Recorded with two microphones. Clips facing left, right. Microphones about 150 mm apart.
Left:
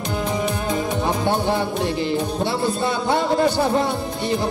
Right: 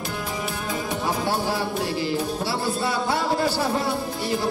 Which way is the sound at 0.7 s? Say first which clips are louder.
Left 2 dB; 20° left (ahead or behind).